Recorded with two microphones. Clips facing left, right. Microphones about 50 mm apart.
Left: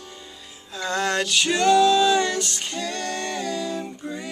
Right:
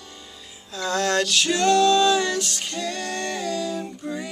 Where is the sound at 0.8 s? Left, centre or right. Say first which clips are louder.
Right 1 dB; centre.